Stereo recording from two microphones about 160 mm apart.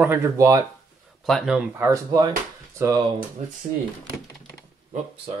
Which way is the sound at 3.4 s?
45° right (ahead or behind).